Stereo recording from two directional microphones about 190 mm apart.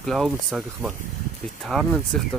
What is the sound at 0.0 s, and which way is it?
Speech, centre (ahead or behind).